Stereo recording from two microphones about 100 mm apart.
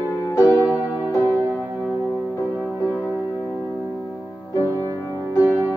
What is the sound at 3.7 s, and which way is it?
Music, 15° left (ahead or behind).